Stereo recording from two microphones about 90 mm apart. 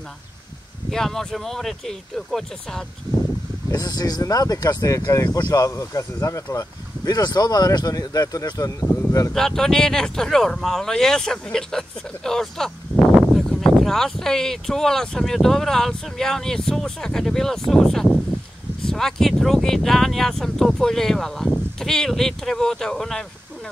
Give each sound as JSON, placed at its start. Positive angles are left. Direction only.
{"t": 0.8, "sound": "speech", "side_deg": 5}
{"t": 3.7, "sound": "speech", "side_deg": 50}
{"t": 7.1, "sound": "speech", "side_deg": 50}
{"t": 9.3, "sound": "speech", "side_deg": 5}